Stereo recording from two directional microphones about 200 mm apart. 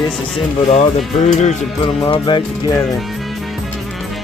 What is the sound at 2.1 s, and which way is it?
Speech, 25° left (ahead or behind).